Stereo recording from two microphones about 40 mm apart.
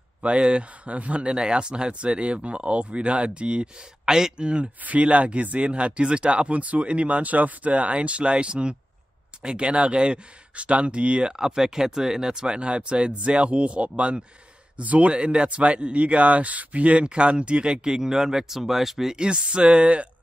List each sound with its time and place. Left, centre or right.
0.4 s speech: right
1.3 s speech: right
4.8 s speech: right
11.4 s speech: centre
19.1 s speech: right